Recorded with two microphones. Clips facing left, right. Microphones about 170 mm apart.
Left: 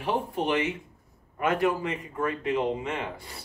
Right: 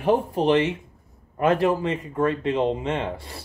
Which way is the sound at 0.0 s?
35° right (ahead or behind).